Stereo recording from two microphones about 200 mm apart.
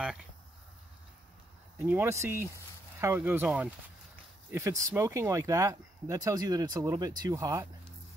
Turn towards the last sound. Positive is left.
turn(degrees=-15)  # may be behind; listen again after turning